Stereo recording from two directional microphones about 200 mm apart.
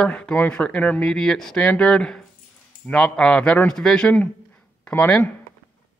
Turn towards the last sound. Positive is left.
turn(degrees=5)  # may be behind; listen again after turning